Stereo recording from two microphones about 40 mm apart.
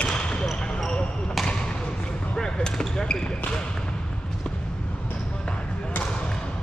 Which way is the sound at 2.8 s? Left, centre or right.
Centre.